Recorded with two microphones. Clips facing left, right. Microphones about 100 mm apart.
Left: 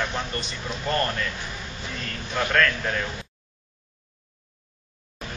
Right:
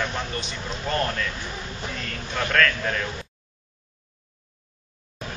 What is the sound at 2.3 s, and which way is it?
Speech, 5° left (ahead or behind).